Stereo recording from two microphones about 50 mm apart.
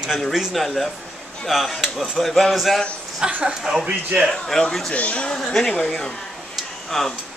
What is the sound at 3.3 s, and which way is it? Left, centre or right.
Speech, right.